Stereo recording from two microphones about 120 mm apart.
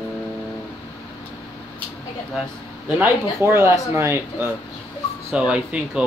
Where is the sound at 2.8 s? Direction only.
15° right (ahead or behind).